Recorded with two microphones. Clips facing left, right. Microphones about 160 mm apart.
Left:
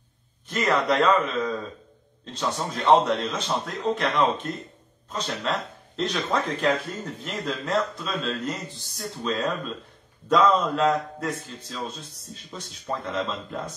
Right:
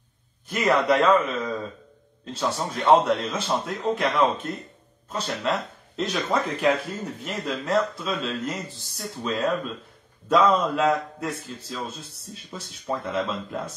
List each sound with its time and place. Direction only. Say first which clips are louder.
0.5 s a man's voice: right 2 dB; 10° right (ahead or behind)